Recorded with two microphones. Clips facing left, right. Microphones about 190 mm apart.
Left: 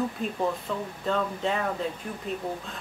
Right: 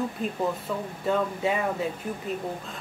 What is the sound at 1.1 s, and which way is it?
Speech, 10° right (ahead or behind).